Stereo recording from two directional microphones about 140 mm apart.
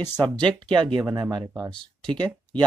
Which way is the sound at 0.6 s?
35° right (ahead or behind).